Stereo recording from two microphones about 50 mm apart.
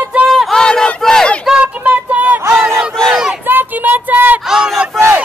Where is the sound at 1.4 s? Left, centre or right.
Centre.